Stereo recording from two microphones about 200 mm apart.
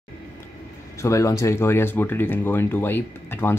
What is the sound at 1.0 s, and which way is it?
Speech, 15° left (ahead or behind).